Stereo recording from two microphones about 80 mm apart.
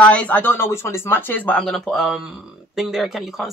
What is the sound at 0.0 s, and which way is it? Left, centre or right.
Speech, centre.